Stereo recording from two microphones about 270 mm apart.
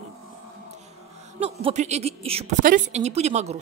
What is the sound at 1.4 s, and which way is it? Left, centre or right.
A woman's voice, right.